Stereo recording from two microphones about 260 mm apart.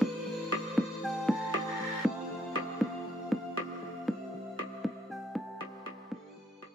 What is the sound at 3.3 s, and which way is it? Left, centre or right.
Music, centre.